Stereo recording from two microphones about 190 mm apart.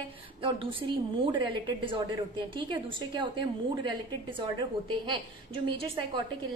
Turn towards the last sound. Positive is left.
turn(degrees=-25)  # may be behind; listen again after turning